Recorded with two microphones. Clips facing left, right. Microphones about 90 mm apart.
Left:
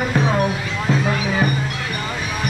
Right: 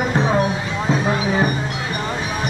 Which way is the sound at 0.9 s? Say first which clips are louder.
Right 1 dB; 20° right (ahead or behind).